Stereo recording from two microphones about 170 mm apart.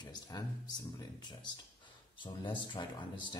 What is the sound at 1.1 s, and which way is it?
Speech, 25° left (ahead or behind).